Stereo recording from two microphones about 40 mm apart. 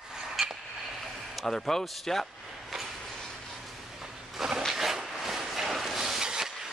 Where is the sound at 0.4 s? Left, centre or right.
Centre.